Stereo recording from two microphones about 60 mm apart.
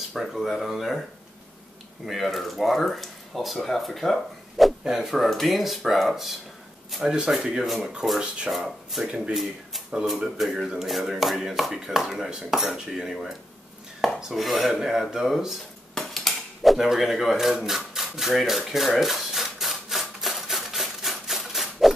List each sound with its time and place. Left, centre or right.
0.1 s speech: centre
2.0 s speech: centre
14.3 s dishes: centre
17.6 s rub: centre